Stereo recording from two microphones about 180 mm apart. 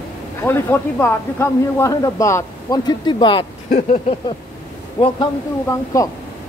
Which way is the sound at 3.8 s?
35° left (ahead or behind).